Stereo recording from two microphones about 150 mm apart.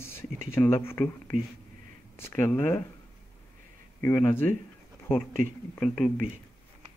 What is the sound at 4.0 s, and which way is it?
Speech, 15° left (ahead or behind).